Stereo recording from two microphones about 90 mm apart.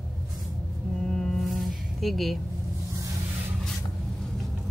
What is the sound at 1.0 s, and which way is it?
Music, 5° left (ahead or behind).